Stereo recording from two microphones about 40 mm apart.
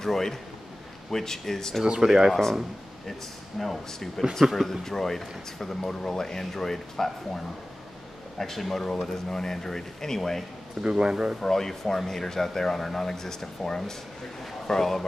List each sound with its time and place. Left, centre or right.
0.0 s speech: centre
2.0 s speech: centre
3.1 s speech: centre
10.8 s speech: right
11.4 s speech: centre